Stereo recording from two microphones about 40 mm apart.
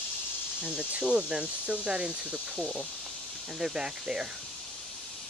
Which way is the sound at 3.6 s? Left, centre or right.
Centre.